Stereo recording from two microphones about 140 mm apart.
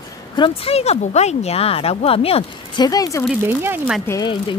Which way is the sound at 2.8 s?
25° left (ahead or behind).